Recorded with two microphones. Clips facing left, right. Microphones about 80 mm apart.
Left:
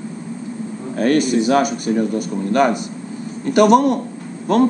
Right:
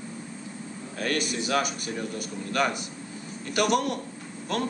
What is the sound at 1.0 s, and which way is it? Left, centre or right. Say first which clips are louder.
Speech: left 13 dB; left.